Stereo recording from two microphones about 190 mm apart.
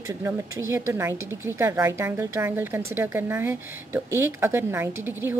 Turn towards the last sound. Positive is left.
turn(degrees=-10)  # may be behind; listen again after turning